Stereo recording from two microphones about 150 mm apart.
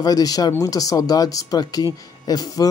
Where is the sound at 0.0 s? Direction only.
25° left (ahead or behind).